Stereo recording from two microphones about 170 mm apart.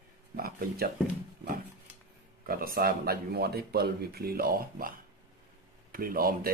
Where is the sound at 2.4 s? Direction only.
60° right (ahead or behind).